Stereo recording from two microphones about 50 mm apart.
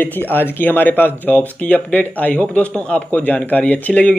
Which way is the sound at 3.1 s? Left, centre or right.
Left.